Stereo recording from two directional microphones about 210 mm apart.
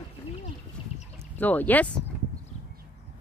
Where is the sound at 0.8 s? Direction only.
25° left (ahead or behind).